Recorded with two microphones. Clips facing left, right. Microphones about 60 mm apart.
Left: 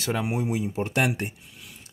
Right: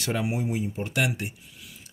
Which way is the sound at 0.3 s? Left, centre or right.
Left.